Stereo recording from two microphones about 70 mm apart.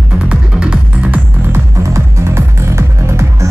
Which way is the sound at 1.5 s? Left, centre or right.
Right.